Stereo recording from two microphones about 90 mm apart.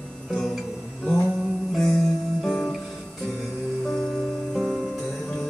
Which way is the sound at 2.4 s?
Centre (ahead or behind).